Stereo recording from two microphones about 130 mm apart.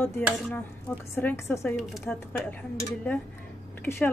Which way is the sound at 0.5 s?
15° left (ahead or behind).